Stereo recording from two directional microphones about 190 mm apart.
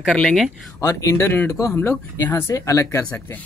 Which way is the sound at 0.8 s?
15° left (ahead or behind).